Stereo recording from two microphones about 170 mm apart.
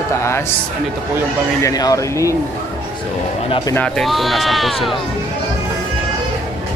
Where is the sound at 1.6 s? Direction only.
20° left (ahead or behind).